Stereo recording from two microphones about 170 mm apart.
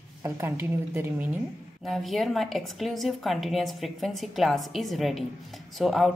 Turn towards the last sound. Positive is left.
turn(degrees=0)  # may be behind; listen again after turning